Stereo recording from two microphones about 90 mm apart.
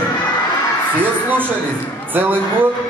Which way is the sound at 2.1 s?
20° right (ahead or behind).